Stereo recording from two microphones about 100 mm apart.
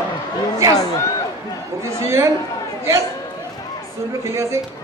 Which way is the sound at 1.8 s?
30° right (ahead or behind).